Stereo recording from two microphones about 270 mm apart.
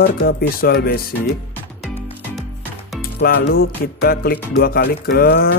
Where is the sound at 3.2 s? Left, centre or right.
Left.